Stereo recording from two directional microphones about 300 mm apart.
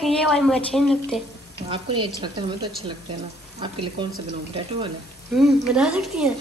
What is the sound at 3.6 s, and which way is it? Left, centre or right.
Speech, centre.